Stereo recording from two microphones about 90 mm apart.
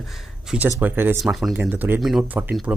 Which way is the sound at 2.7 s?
15° right (ahead or behind).